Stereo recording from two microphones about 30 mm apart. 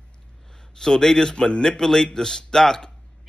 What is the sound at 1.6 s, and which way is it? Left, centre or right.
Speech, centre.